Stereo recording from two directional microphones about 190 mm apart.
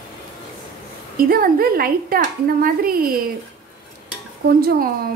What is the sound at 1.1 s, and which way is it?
A woman's voice, 50° right (ahead or behind).